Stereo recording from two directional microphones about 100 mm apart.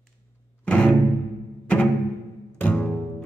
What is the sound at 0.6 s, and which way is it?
Music, 15° left (ahead or behind).